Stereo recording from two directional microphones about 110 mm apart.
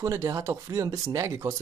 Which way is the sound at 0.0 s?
30° right (ahead or behind).